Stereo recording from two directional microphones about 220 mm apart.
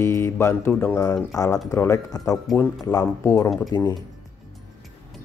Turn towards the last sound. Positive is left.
turn(degrees=20)  # may be behind; listen again after turning